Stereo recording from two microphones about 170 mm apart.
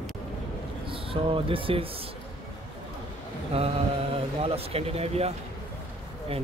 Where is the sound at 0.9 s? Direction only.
30° right (ahead or behind).